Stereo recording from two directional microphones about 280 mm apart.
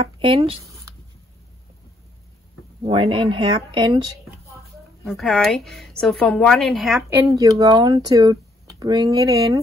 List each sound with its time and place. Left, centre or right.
0.0 s a sound: centre
2.8 s speech: centre
5.0 s a woman's voice: centre
7.3 s speech: centre